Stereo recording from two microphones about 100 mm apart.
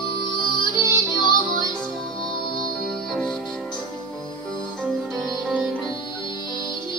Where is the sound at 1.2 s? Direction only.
50° left (ahead or behind).